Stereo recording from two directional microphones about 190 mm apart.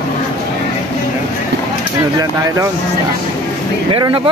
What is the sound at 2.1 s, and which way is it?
Speech, 15° right (ahead or behind).